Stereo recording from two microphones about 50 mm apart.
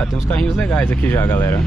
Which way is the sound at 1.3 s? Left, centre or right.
Left.